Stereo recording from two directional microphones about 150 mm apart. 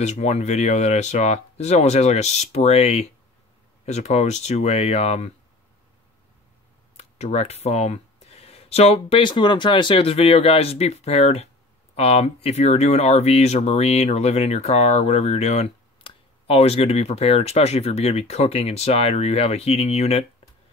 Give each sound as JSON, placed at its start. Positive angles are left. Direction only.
{"t": 0.0, "sound": "speech", "side_deg": 50}
{"t": 7.0, "sound": "speech", "side_deg": 50}